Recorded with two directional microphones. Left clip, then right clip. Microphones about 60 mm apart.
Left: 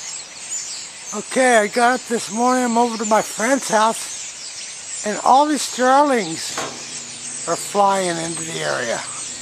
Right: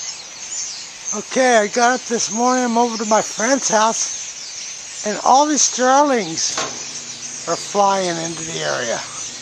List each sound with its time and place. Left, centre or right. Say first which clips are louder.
1.1 s speech: even; right
5.2 s speech: right 1 dB; right
7.8 s speech: even; right